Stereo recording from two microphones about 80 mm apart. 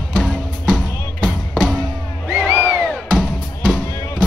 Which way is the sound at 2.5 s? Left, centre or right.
Right.